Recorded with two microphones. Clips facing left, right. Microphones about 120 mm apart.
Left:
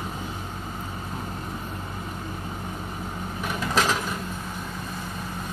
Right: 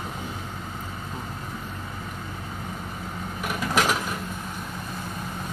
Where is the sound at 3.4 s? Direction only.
10° right (ahead or behind).